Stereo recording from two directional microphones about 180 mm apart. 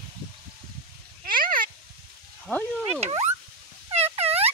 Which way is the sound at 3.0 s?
35° right (ahead or behind).